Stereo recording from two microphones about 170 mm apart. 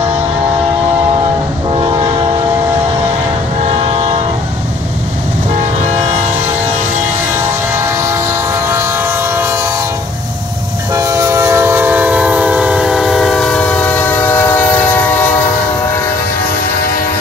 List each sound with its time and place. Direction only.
1.7 s train: 25° right (ahead or behind)
3.6 s train: 35° right (ahead or behind)
7.7 s train: 15° right (ahead or behind)
10.9 s train: 20° right (ahead or behind); by 14.9 s 10° left (ahead or behind)